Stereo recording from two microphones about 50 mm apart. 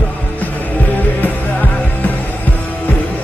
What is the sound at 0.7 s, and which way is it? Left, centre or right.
Music, left.